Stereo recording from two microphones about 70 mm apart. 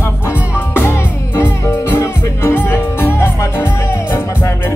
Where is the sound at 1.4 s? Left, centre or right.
Left.